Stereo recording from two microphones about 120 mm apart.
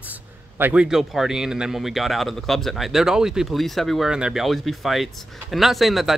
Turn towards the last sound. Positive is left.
turn(degrees=0)  # may be behind; listen again after turning